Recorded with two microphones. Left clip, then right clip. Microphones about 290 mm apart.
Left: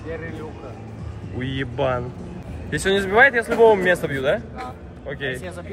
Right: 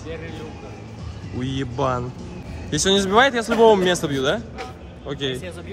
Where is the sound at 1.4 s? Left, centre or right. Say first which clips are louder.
Even; centre.